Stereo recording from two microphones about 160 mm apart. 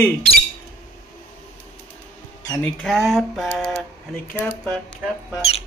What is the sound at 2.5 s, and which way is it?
Speech, 15° left (ahead or behind).